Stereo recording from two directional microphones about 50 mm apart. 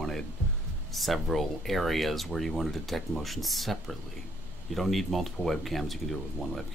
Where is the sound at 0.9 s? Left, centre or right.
Centre.